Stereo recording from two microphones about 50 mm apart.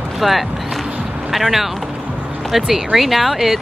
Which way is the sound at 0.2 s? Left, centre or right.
Centre.